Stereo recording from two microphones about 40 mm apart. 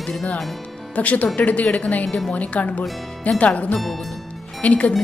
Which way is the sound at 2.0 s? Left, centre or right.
Centre.